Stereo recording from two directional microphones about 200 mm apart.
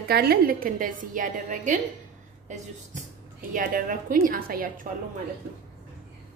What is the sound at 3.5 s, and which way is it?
A woman's voice, 40° right (ahead or behind).